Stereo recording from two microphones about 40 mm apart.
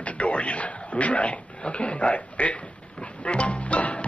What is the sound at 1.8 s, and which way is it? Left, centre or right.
Speech, left.